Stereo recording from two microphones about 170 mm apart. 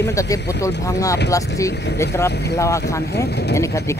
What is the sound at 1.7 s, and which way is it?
Speech, 85° left.